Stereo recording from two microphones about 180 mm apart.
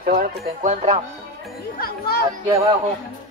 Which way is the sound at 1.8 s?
55° left (ahead or behind).